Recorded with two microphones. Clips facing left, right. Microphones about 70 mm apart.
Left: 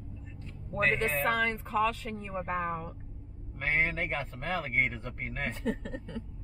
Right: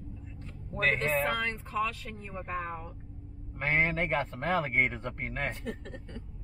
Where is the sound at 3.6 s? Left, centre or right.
Right.